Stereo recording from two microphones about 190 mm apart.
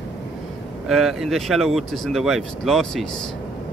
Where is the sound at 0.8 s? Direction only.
Centre (ahead or behind).